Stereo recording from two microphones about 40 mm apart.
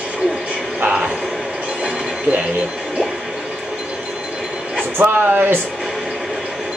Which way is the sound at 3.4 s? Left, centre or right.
Centre.